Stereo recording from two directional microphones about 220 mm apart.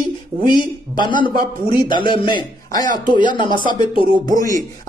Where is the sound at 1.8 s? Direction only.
20° left (ahead or behind).